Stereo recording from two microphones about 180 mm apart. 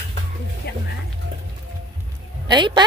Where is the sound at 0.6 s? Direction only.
60° left (ahead or behind).